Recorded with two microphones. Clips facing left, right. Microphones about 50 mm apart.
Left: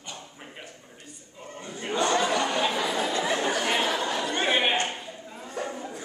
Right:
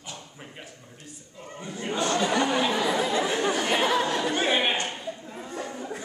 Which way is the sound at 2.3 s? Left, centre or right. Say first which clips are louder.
Right 2 dB; centre.